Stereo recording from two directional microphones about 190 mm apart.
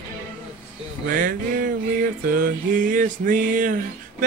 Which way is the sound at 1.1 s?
45° right (ahead or behind).